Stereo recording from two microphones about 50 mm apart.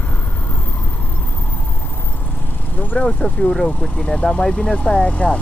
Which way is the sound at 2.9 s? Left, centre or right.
Left.